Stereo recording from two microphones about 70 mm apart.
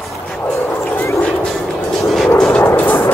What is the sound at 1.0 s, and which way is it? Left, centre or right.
Dog, left.